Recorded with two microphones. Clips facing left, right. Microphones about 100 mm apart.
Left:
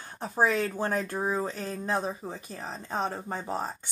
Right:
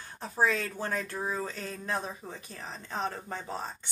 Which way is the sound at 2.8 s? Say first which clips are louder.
Left 3 dB; 35° left (ahead or behind).